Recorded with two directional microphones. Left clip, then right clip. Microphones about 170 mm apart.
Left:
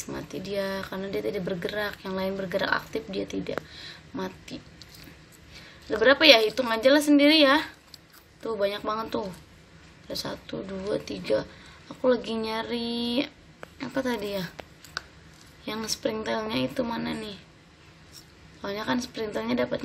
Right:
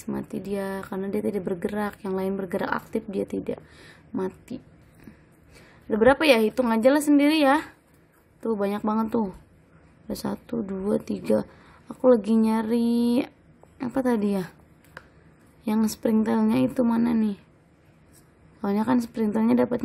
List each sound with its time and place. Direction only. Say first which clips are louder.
0.0 s speech: right 2 dB; 50° right (ahead or behind)
5.9 s speech: left 1 dB; 45° right (ahead or behind)
15.6 s speech: right 4 dB; 55° right (ahead or behind)
18.6 s speech: right 4 dB; 55° right (ahead or behind)